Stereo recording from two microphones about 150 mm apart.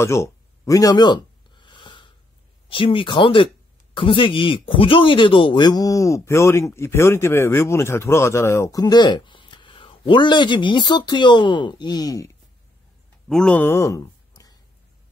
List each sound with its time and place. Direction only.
0.0 s a sound: 20° left (ahead or behind)
2.7 s speech: 35° left (ahead or behind)
13.3 s speech: 5° left (ahead or behind); by 14.6 s 25° left (ahead or behind)